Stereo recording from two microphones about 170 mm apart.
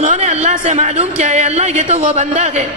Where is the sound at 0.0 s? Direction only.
40° right (ahead or behind).